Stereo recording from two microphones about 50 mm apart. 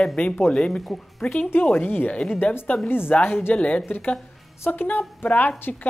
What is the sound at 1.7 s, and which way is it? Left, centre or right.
Speech, left.